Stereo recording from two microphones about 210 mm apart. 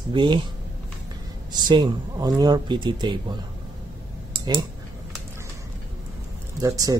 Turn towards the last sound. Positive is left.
turn(degrees=-15)  # may be behind; listen again after turning